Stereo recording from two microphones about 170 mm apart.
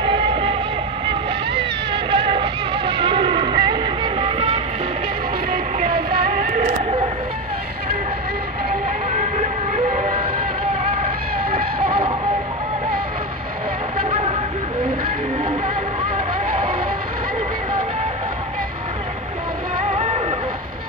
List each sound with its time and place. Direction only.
0.0 s music: 30° right (ahead or behind)
5.5 s music: 60° right (ahead or behind)
9.1 s vehicle: 45° right (ahead or behind)
11.8 s music: 30° right (ahead or behind)
19.8 s music: 40° right (ahead or behind)